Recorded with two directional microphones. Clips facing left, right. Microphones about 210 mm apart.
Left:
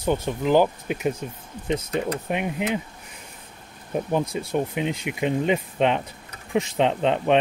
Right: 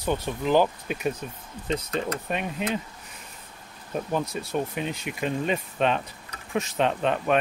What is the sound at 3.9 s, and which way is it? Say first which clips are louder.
Speech: left 4 dB; 15° left (ahead or behind).